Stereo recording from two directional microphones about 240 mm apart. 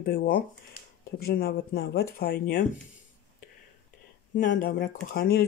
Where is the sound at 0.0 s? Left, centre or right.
Left.